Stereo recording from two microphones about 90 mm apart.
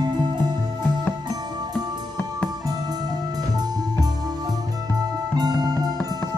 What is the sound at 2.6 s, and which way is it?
Music, 45° right (ahead or behind).